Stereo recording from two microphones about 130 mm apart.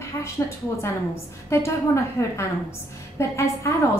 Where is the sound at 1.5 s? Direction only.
20° left (ahead or behind).